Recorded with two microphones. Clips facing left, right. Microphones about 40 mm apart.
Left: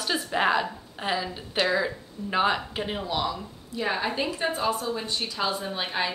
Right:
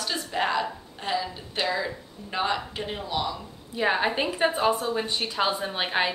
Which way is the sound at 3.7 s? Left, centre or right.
Right.